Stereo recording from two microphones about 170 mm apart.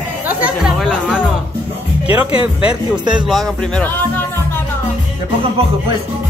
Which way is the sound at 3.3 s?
Centre (ahead or behind).